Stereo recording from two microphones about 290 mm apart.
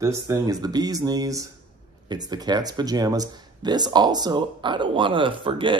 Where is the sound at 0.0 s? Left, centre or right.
Centre.